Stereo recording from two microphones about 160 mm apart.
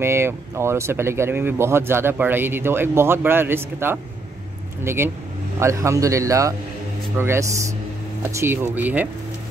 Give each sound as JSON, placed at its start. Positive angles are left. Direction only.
{"t": 0.0, "sound": "a man's voice", "side_deg": -15}